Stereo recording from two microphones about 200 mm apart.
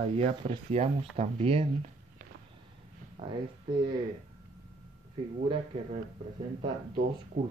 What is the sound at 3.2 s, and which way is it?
Speech, 25° right (ahead or behind).